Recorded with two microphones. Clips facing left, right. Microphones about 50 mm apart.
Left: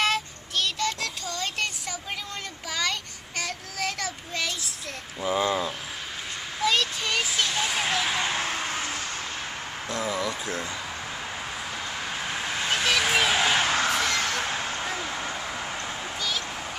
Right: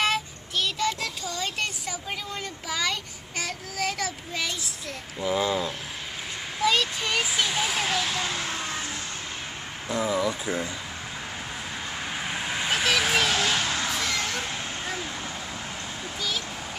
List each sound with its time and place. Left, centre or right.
0.0 s child singing: centre
5.2 s speech: centre
6.6 s children playing: centre
8.1 s vehicle: left
9.8 s speech: centre
12.4 s vehicle: centre
13.3 s a sound: centre
13.6 s music: left
14.1 s vehicle: left
15.0 s a sound: left
16.2 s a sound: centre